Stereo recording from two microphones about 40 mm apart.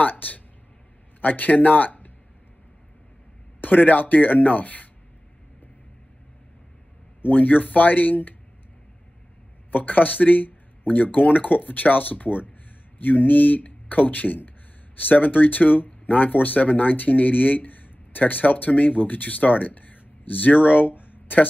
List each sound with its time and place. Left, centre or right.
0.0 s speech: left
3.6 s speech: left
7.2 s speech: left
9.7 s speech: left